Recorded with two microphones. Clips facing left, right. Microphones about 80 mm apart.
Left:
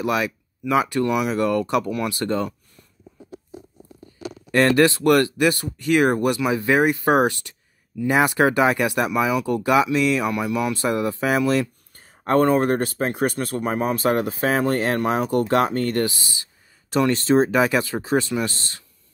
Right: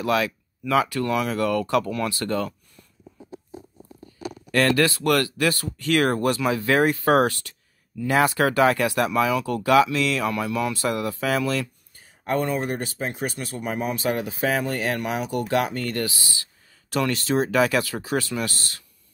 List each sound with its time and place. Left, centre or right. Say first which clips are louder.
0.0 s speech: even; centre
4.5 s speech: left 4 dB; left
12.0 s speech: left 6 dB; left
13.6 s speech: left 3 dB; left